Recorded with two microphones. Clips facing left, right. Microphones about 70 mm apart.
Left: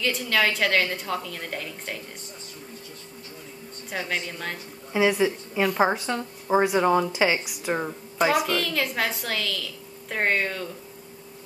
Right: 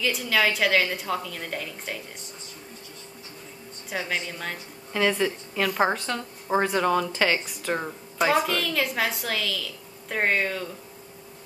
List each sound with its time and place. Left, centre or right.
0.0 s a woman's voice: centre
4.1 s a woman's voice: centre
4.9 s a woman's voice: centre
5.9 s a woman's voice: centre